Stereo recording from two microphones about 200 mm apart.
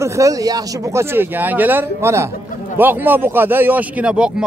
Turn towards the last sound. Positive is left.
turn(degrees=-5)  # may be behind; listen again after turning